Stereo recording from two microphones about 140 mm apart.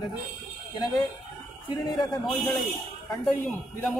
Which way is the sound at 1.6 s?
30° left (ahead or behind).